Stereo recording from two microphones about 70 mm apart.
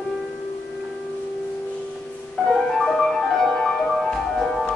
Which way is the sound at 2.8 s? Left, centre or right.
Centre.